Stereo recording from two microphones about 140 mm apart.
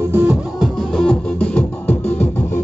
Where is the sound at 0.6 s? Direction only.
5° left (ahead or behind).